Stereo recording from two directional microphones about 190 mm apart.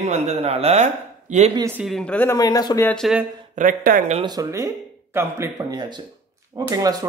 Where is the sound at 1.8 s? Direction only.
Centre (ahead or behind).